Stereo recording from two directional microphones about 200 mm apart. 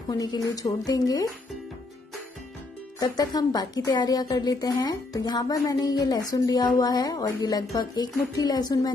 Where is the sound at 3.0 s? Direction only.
20° left (ahead or behind).